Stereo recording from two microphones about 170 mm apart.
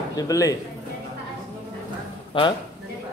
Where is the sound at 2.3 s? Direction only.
30° left (ahead or behind).